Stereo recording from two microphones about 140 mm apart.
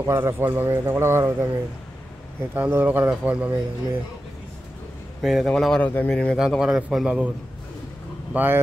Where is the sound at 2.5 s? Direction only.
15° right (ahead or behind).